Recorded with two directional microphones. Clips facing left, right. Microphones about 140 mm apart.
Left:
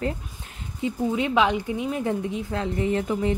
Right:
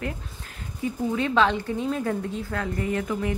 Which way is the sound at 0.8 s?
20° left (ahead or behind).